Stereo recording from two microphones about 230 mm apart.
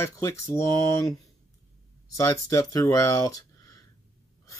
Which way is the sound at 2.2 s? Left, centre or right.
Centre.